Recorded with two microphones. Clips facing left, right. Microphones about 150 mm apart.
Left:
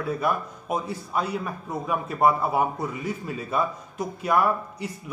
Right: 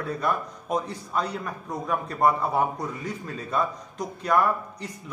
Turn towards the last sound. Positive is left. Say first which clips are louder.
# left 1 dB
turn(degrees=5)  # may be behind; listen again after turning